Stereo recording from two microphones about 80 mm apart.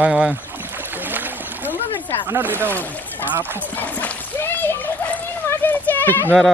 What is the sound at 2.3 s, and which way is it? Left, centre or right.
Speech, right.